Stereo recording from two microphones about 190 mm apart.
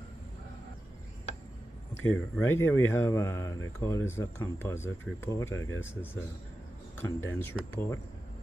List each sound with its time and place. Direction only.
2.0 s speech: 10° left (ahead or behind)
5.5 s speech: 90° left
7.0 s speech: 10° left (ahead or behind)